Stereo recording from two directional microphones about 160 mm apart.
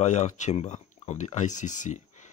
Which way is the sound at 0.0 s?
45° left (ahead or behind).